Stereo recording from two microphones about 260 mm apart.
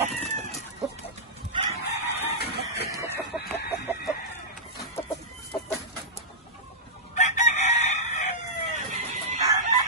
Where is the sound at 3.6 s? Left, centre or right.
Left.